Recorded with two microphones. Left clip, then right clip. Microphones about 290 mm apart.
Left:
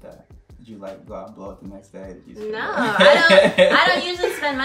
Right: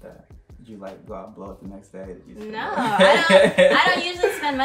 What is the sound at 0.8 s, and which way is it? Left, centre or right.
Speech, centre.